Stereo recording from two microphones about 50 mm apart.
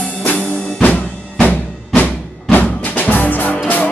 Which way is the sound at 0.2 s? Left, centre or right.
Left.